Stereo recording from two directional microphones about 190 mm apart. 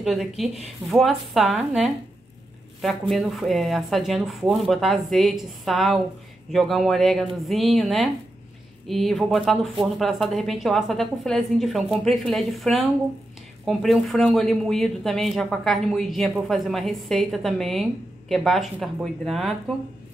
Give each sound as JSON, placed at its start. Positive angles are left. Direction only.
{"t": 0.0, "sound": "speech", "side_deg": 0}